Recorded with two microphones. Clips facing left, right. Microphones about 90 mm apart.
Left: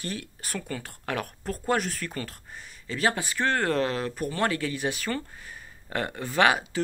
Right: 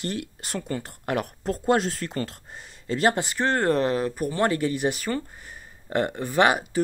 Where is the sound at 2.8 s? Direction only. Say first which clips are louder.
Right 4 dB; 45° right (ahead or behind).